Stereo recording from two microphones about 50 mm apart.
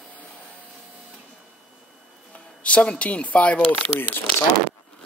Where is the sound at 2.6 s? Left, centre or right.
Left.